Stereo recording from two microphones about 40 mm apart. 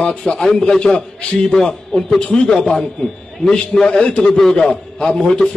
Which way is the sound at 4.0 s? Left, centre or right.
Left.